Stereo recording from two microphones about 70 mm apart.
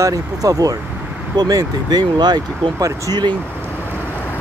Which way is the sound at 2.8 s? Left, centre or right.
Right.